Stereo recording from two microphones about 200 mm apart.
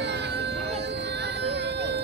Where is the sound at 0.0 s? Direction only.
55° right (ahead or behind).